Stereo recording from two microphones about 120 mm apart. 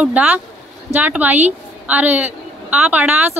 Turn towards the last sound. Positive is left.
turn(degrees=-15)  # may be behind; listen again after turning